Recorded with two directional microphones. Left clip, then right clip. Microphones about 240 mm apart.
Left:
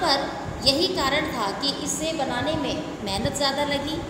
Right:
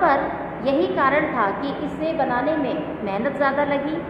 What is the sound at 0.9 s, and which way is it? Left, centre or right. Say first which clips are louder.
A woman's voice: right 5 dB; centre.